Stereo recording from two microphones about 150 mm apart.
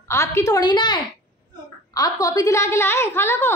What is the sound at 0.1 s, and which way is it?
A woman's voice, 20° left (ahead or behind).